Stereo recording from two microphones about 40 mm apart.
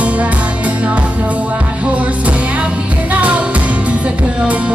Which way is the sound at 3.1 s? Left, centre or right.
Right.